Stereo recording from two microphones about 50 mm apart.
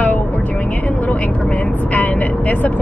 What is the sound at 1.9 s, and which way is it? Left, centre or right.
Speech, left.